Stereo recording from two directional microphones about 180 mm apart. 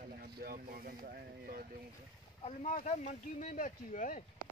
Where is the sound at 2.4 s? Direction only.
35° left (ahead or behind).